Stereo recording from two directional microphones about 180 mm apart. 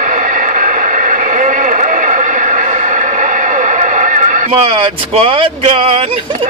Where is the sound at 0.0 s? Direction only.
45° right (ahead or behind).